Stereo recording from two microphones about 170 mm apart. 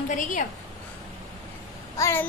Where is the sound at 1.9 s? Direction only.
15° left (ahead or behind).